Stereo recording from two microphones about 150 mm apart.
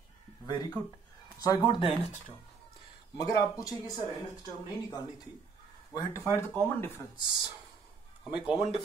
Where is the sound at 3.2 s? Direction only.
25° left (ahead or behind).